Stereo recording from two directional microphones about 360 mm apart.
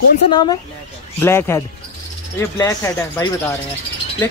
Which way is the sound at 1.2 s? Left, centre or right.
Centre.